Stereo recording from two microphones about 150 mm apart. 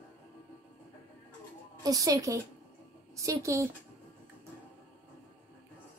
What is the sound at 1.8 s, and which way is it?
A woman's voice, 25° right (ahead or behind).